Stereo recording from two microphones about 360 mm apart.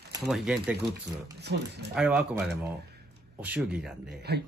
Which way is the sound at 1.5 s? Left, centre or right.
Right.